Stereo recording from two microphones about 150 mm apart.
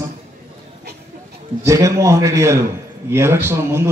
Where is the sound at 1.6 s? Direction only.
20° right (ahead or behind).